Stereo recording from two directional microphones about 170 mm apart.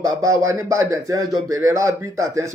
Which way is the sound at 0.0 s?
20° right (ahead or behind).